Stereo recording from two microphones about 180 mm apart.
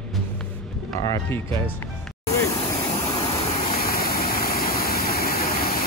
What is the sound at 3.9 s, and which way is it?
Waterfall, 55° left (ahead or behind).